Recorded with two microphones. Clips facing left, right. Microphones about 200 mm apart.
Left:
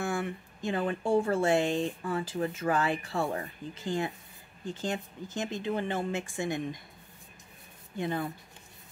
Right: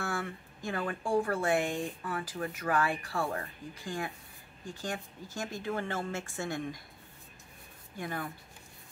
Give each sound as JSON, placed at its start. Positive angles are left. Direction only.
{"t": 0.0, "sound": "speech", "side_deg": 20}
{"t": 8.0, "sound": "speech", "side_deg": 25}